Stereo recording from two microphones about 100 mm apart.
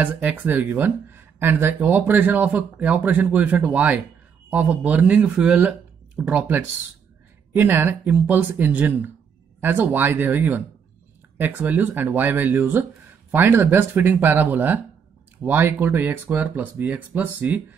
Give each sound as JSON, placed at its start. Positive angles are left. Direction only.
{"t": 0.0, "sound": "speech", "side_deg": -15}